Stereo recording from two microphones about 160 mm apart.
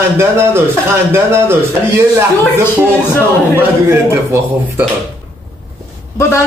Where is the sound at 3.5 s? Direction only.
15° right (ahead or behind).